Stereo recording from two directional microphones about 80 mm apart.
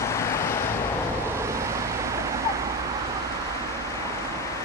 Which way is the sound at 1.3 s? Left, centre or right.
Right.